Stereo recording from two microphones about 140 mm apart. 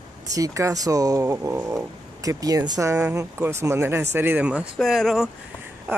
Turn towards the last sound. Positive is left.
turn(degrees=0)  # may be behind; listen again after turning